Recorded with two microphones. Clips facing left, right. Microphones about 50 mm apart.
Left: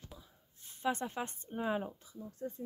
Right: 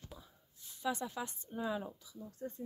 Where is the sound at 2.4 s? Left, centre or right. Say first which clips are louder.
Left 2 dB; centre.